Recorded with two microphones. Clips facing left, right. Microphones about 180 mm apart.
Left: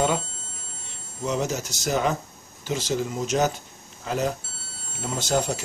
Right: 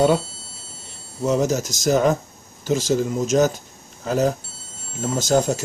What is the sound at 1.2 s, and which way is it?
Speech, 45° right (ahead or behind).